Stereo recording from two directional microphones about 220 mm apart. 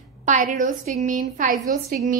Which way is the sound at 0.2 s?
35° right (ahead or behind).